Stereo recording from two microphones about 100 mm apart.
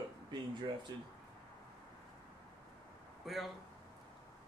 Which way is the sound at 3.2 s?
Centre (ahead or behind).